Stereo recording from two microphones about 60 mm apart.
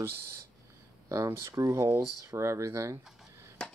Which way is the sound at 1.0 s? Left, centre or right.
Right.